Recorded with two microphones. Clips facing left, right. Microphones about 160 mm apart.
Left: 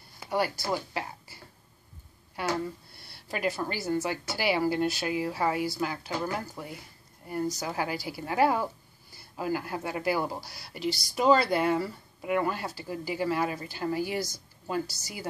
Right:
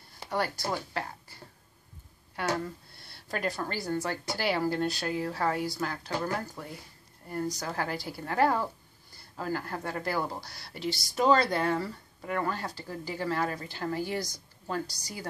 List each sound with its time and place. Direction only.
0.3 s speech: 10° left (ahead or behind)
3.1 s a woman's voice: 5° left (ahead or behind)